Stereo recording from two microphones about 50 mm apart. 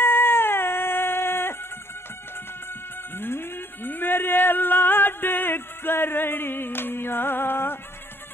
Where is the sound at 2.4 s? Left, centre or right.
Left.